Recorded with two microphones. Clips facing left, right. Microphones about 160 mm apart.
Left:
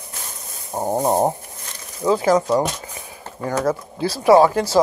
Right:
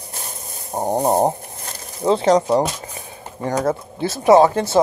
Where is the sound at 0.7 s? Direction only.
20° right (ahead or behind).